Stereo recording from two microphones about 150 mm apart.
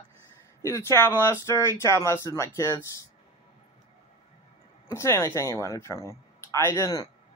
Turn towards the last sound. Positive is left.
turn(degrees=25)  # may be behind; listen again after turning